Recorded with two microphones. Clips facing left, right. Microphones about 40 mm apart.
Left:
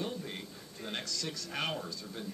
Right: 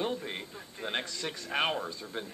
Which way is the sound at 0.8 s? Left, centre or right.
Right.